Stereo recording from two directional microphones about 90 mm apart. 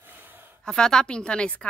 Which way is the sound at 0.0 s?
20° right (ahead or behind).